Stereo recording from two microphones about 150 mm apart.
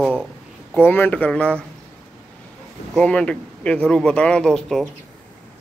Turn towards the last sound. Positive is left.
turn(degrees=5)  # may be behind; listen again after turning